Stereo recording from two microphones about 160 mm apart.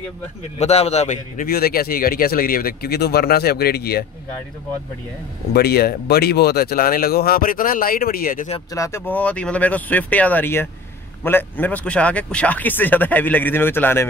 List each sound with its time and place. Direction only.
0.6 s a man's voice: 40° left (ahead or behind); by 4.0 s 80° left
5.5 s a man's voice: 80° left; by 8.5 s 65° left (ahead or behind)
8.7 s speech: 20° left (ahead or behind)